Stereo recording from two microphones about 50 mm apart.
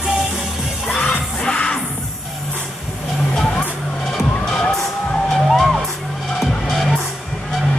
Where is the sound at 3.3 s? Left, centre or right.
Centre.